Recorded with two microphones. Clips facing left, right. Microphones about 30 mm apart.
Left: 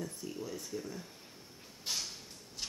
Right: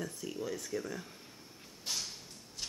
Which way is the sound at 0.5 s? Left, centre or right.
Right.